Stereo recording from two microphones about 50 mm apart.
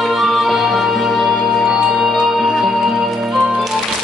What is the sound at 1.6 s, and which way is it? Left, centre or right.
Music, centre.